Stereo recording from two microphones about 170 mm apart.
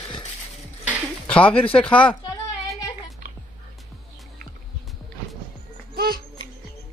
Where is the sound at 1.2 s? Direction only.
10° left (ahead or behind).